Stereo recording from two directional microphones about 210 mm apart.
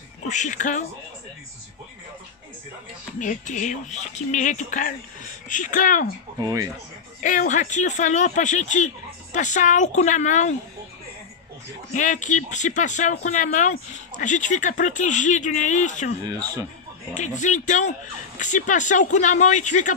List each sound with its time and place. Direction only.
0.3 s speech: 35° left (ahead or behind)
3.2 s speech: 35° left (ahead or behind)
6.4 s speech: 15° right (ahead or behind)
7.2 s speech: 35° left (ahead or behind)
11.9 s speech: 35° left (ahead or behind)
16.2 s speech: 20° right (ahead or behind)
17.4 s speech: 35° left (ahead or behind)